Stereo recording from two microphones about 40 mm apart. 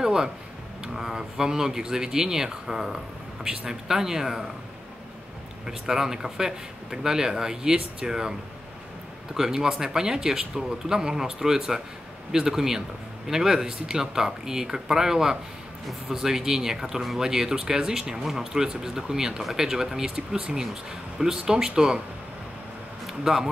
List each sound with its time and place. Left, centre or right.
0.0 s a sound: centre
0.8 s speech: centre
5.7 s speech: centre
23.0 s speech: centre